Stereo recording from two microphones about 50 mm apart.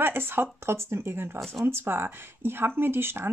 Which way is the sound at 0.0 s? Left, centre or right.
Right.